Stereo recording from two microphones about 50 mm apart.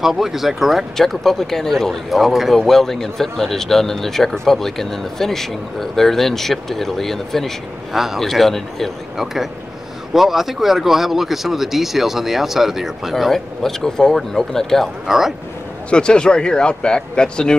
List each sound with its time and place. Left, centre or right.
0.0 s speech: centre
0.9 s a man's voice: centre
7.9 s speech: centre
9.1 s speech: centre
15.0 s speech: centre
15.9 s a man's voice: centre